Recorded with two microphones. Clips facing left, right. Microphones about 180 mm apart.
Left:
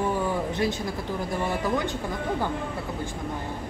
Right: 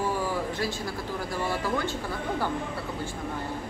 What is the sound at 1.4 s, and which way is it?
Speech, 15° left (ahead or behind).